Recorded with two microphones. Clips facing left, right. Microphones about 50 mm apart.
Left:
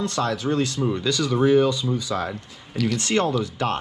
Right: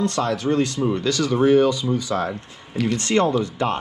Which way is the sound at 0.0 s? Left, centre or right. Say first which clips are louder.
Right 2 dB; right.